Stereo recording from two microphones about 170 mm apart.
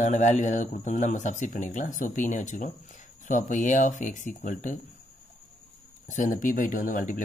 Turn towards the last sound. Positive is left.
turn(degrees=50)  # may be behind; listen again after turning